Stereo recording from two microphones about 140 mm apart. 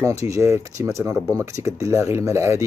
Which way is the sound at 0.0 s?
20° right (ahead or behind).